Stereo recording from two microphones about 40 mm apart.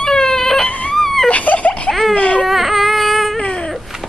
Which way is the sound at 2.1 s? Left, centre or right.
Left.